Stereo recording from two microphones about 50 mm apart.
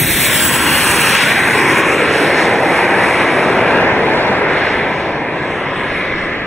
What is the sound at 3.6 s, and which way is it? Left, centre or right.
Vehicle, left.